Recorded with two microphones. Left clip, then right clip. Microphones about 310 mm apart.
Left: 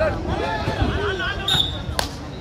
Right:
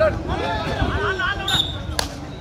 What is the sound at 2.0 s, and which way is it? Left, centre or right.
Basketball bounce, centre.